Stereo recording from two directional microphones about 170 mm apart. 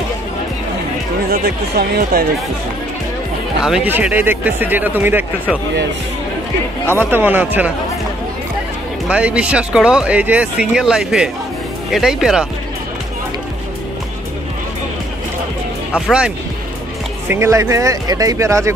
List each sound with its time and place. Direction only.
1.3 s speech: 65° right (ahead or behind)
3.6 s speech: 5° right (ahead or behind)
7.0 s speech: 10° right (ahead or behind)
9.1 s speech: 5° right (ahead or behind)
17.3 s speech: 15° right (ahead or behind)